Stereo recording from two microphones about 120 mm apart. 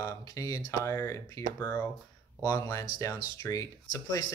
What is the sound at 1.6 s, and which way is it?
Speech, 15° left (ahead or behind).